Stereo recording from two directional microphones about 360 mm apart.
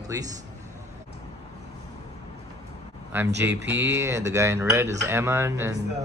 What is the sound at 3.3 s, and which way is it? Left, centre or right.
Speech, right.